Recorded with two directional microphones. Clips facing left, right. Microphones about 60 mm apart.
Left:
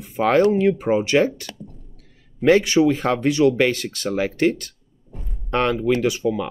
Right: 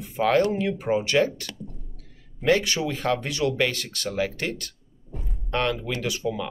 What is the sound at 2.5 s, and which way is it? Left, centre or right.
Speech, left.